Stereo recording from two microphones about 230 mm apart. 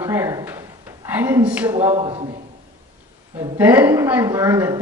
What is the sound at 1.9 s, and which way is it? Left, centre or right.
Speech, right.